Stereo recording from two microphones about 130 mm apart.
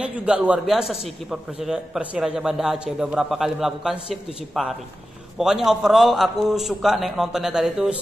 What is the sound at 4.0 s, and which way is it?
Speech, 45° left (ahead or behind).